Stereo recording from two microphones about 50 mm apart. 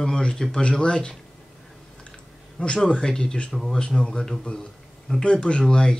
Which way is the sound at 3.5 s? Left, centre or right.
Centre.